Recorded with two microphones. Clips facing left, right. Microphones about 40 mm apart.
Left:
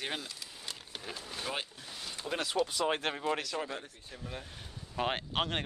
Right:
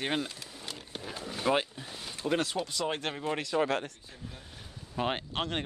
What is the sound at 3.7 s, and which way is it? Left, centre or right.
Speech, right.